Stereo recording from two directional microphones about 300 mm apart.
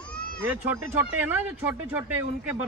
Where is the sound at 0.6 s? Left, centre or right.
Centre.